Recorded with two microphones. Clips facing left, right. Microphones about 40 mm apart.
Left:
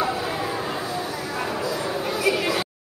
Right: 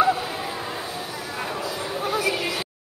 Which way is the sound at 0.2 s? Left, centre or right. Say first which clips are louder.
Left 3 dB; centre.